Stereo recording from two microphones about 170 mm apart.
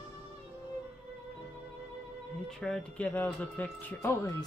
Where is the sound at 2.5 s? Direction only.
Centre (ahead or behind).